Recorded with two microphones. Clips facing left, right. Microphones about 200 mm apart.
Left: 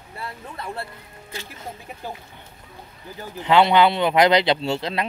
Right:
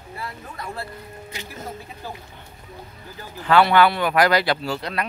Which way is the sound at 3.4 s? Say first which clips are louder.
Even; 20° left (ahead or behind).